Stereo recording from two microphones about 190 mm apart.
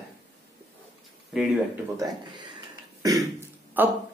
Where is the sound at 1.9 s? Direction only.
20° right (ahead or behind).